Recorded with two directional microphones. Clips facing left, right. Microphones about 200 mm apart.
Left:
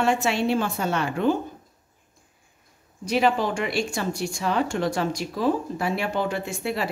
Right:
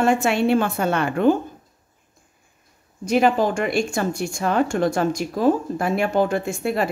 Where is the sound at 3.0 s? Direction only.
45° right (ahead or behind).